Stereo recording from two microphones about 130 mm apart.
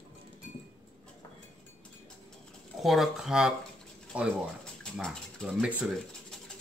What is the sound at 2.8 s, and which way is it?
Speech, centre (ahead or behind).